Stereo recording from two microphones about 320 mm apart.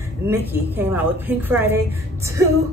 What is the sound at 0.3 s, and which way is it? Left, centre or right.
A woman's voice, centre.